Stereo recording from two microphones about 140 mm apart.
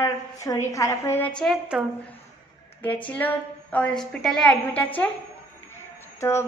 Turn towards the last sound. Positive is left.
turn(degrees=20)  # may be behind; listen again after turning